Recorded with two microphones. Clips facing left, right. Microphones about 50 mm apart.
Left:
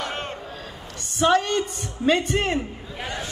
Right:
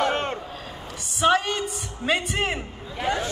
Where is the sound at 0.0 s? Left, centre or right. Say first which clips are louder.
Right 6 dB; right.